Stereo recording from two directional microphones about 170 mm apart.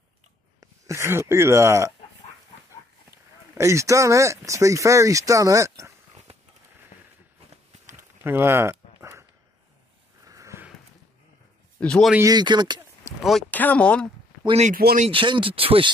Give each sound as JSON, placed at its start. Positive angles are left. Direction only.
{"t": 0.6, "sound": "speech", "side_deg": -15}
{"t": 3.1, "sound": "speech", "side_deg": -15}
{"t": 6.3, "sound": "a sound", "side_deg": -40}
{"t": 6.9, "sound": "a sound", "side_deg": 45}
{"t": 8.2, "sound": "a sound", "side_deg": -15}
{"t": 10.2, "sound": "sniff", "side_deg": -20}
{"t": 11.8, "sound": "speech", "side_deg": 5}
{"t": 12.2, "sound": "speech", "side_deg": -25}
{"t": 13.2, "sound": "speech", "side_deg": 0}
{"t": 14.4, "sound": "speech", "side_deg": -35}
{"t": 14.7, "sound": "speech", "side_deg": -65}
{"t": 15.0, "sound": "speech", "side_deg": -30}